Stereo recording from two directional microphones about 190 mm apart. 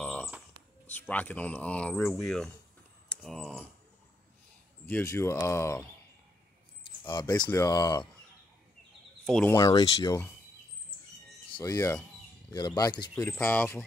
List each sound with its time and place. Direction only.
0.0 s a sound: 5° left (ahead or behind)
0.8 s speech: 10° left (ahead or behind)
4.8 s speech: 10° left (ahead or behind)
7.1 s speech: 20° left (ahead or behind)
9.2 s speech: centre (ahead or behind)
9.5 s speech: 15° left (ahead or behind)
11.5 s speech: 15° left (ahead or behind)
13.1 s speech: 10° left (ahead or behind)